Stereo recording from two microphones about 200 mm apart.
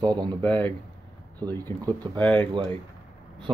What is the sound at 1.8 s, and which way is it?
Speech, 20° right (ahead or behind).